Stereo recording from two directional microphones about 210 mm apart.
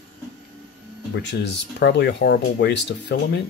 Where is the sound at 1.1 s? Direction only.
55° left (ahead or behind).